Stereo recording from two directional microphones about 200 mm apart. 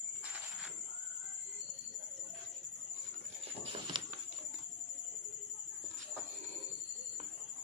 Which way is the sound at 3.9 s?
25° right (ahead or behind).